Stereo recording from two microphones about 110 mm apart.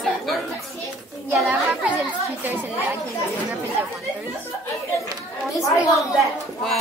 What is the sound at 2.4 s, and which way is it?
Speech, 15° right (ahead or behind).